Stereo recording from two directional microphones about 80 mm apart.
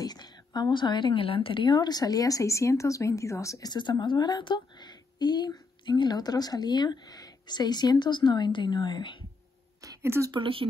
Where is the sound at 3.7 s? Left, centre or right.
Left.